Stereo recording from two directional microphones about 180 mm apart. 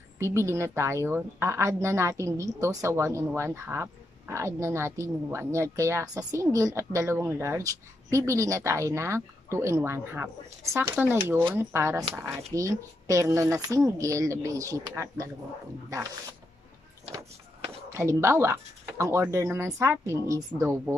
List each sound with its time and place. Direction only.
0.2 s a woman's voice: 15° right (ahead or behind)
17.9 s a woman's voice: 15° right (ahead or behind)